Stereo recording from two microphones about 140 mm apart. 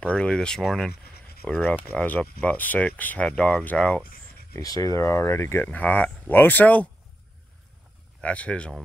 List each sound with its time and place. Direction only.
0.0 s speech: 5° left (ahead or behind)
4.6 s speech: 25° left (ahead or behind)
8.2 s speech: 10° left (ahead or behind)